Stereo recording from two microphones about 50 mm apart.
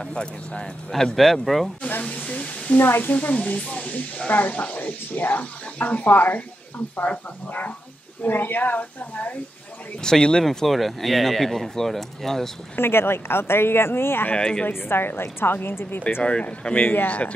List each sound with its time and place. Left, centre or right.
0.0 s speech: centre
1.1 s speech: centre
1.8 s a sound: left
2.8 s speech: left
3.2 s speech: left
9.9 s speech: centre
12.7 s speech: left
14.3 s speech: centre
14.7 s speech: left
16.2 s speech: left